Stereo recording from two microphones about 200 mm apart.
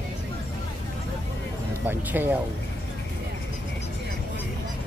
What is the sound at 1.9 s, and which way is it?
Speech, 10° right (ahead or behind).